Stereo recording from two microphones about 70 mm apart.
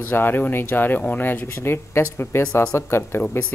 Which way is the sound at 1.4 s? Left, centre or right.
Left.